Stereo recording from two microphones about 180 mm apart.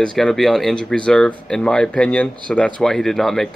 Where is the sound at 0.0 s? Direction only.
Centre (ahead or behind).